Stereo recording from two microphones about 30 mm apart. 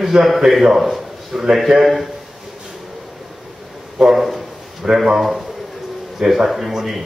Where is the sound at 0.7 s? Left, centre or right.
Centre.